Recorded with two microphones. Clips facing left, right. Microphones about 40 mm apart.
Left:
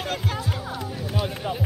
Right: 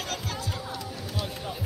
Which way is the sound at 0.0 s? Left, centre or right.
Left.